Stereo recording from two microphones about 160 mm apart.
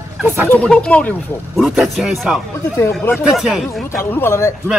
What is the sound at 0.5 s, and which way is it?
A man's voice, 5° left (ahead or behind).